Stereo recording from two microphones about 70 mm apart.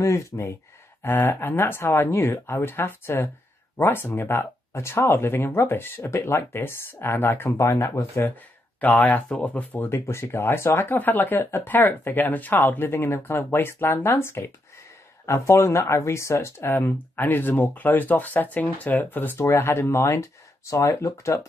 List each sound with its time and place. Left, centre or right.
0.0 s speech: left
1.0 s speech: left
4.7 s speech: left
7.5 s speech: left
8.8 s speech: left
19.3 s speech: left